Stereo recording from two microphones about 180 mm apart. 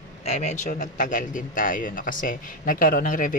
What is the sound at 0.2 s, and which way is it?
Speech, 40° left (ahead or behind).